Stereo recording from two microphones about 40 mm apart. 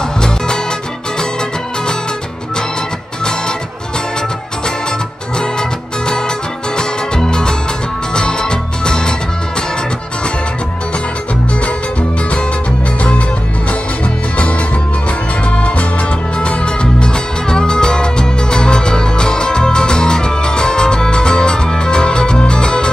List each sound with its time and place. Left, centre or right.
5.4 s music: centre
15.5 s music: left